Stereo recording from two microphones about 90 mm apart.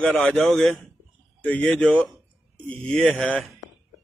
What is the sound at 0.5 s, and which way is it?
Speech, 5° left (ahead or behind).